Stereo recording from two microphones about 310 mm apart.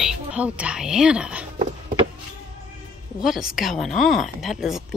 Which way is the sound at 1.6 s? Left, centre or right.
Right.